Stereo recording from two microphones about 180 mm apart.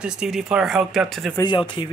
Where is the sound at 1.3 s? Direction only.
25° left (ahead or behind).